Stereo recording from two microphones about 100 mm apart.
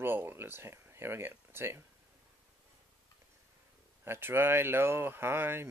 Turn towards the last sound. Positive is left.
turn(degrees=-25)  # may be behind; listen again after turning